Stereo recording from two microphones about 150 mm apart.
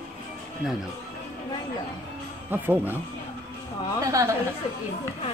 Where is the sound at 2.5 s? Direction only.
15° right (ahead or behind).